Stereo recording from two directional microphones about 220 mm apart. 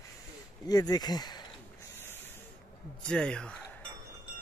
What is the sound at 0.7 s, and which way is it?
Speech, 15° left (ahead or behind).